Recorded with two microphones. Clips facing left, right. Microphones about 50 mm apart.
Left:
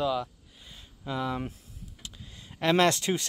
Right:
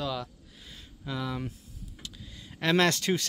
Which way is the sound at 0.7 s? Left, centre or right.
Centre.